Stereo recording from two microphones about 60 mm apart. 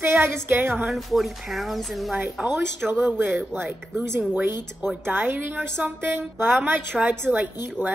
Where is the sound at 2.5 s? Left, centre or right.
Right.